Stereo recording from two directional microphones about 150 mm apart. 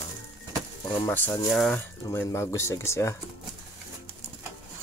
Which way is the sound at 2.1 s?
15° left (ahead or behind).